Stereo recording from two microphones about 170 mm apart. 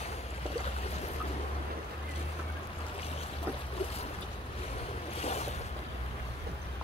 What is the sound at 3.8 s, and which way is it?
Boat, 35° left (ahead or behind).